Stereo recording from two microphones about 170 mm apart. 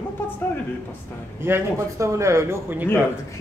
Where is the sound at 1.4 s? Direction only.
15° right (ahead or behind).